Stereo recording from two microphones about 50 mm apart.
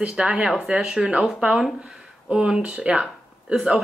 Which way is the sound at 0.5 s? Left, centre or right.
Centre.